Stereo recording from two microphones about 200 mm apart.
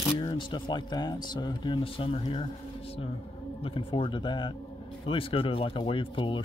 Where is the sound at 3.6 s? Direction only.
25° left (ahead or behind).